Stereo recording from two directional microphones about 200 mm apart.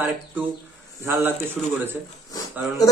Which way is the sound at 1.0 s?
10° right (ahead or behind).